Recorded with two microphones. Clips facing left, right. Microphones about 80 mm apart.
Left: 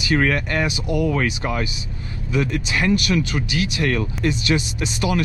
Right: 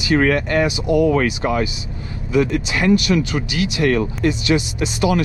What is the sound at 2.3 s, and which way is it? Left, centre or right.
Speech, right.